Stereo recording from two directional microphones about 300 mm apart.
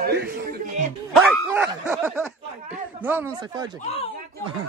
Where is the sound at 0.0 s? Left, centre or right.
Right.